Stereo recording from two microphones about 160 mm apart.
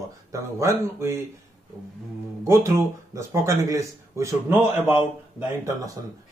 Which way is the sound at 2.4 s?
20° right (ahead or behind).